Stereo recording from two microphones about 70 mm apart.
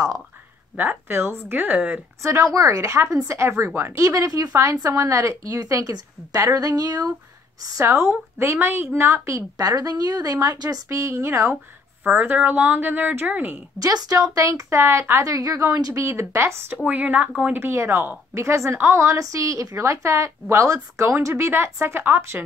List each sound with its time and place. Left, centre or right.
0.7 s speech: right
2.2 s a woman's voice: right
7.8 s a woman's voice: right
9.6 s a woman's voice: right
11.0 s a woman's voice: right
12.1 s speech: right
13.7 s a woman's voice: right
16.7 s speech: right
17.6 s a woman's voice: right